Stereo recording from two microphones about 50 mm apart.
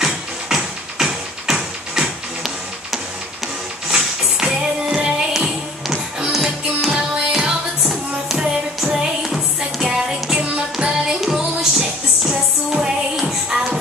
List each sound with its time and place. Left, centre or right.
0.0 s music: centre